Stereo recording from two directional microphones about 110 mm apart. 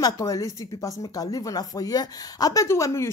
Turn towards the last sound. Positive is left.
turn(degrees=25)  # may be behind; listen again after turning